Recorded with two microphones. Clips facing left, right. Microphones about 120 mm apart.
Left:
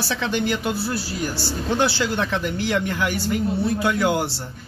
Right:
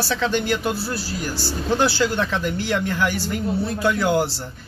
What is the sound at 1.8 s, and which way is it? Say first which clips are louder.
A man's voice: right 1 dB; 20° left (ahead or behind).